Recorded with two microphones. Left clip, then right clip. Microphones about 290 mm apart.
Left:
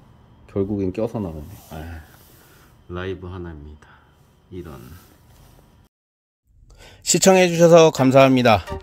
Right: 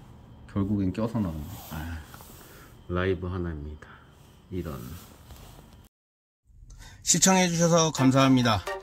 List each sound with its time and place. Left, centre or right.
0.5 s speech: centre
2.9 s speech: centre
6.8 s speech: left